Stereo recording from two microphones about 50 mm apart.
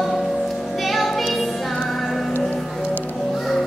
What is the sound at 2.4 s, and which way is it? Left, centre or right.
Music, left.